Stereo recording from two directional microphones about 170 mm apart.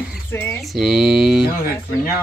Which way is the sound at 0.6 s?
Centre (ahead or behind).